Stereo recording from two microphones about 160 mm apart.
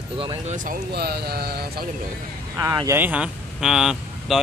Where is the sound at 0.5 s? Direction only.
55° right (ahead or behind).